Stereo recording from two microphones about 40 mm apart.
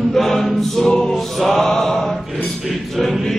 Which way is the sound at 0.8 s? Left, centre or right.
Centre.